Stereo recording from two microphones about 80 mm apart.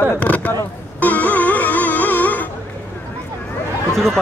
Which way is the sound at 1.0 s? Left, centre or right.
Centre.